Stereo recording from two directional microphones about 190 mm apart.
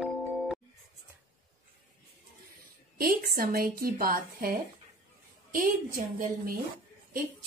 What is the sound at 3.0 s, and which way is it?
A woman's voice, 50° right (ahead or behind).